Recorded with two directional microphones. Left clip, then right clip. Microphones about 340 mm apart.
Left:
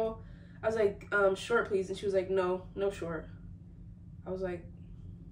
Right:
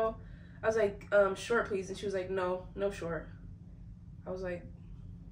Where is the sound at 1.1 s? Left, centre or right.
Centre.